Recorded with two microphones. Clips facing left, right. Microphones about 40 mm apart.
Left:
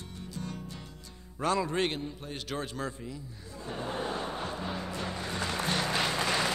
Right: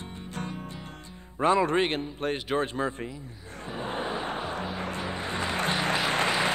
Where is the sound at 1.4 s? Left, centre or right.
Right.